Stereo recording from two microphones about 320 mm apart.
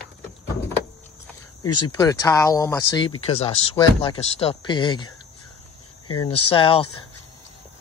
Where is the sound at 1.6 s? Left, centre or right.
Left.